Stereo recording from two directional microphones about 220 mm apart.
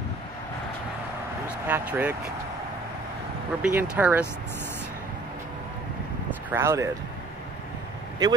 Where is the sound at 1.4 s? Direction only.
5° right (ahead or behind).